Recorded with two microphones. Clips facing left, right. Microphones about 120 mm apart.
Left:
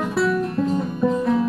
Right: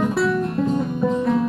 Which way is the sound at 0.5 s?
15° right (ahead or behind).